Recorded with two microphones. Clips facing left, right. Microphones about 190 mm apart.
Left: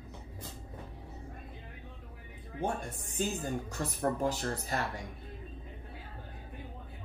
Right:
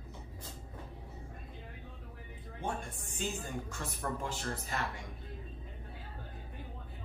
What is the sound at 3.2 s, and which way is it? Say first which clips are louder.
Speech: left 5 dB; 40° left (ahead or behind).